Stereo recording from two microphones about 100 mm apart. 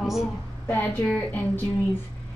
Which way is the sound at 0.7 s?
20° left (ahead or behind).